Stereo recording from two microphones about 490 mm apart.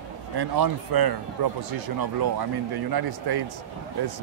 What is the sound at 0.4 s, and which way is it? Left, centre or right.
Speech, right.